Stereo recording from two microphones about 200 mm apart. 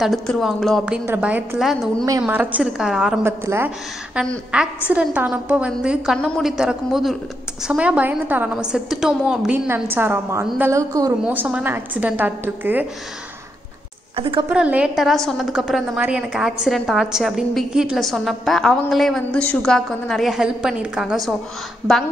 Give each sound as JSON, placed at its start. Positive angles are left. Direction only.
{"t": 0.0, "sound": "a woman's voice", "side_deg": 0}
{"t": 14.1, "sound": "a woman's voice", "side_deg": -25}
{"t": 14.5, "sound": "a woman's voice", "side_deg": -5}